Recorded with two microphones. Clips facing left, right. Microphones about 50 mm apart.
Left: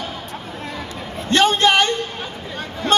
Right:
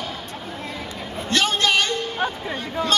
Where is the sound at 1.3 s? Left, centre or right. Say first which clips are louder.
Left 5 dB; left.